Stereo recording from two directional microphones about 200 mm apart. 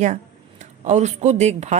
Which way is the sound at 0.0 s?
35° right (ahead or behind).